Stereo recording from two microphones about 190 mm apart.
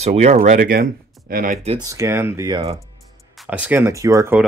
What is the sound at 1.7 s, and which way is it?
Speech, 15° right (ahead or behind).